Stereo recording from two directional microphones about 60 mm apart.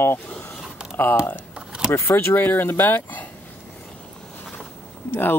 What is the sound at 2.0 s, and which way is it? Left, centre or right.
Speech, left.